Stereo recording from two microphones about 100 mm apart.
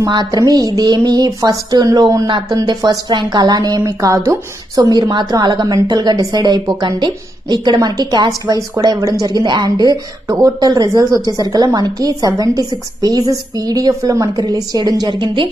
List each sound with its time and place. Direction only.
0.0 s a woman's voice: 40° right (ahead or behind)
2.2 s a woman's voice: 50° right (ahead or behind)
10.2 s a woman's voice: 35° right (ahead or behind)